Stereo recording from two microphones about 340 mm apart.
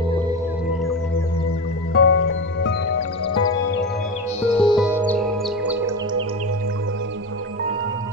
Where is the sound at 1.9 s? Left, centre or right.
Left.